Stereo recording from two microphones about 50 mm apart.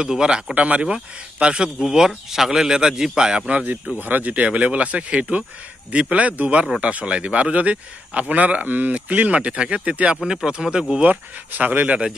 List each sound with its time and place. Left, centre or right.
0.0 s speech: centre
0.6 s speech: right
4.0 s a man's voice: right
10.2 s speech: centre
11.1 s speech: right